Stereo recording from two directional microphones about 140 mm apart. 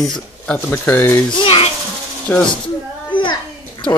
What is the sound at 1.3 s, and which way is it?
Speech, 40° left (ahead or behind).